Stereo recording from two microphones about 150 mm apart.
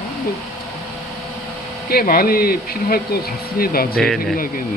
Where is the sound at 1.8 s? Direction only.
85° left.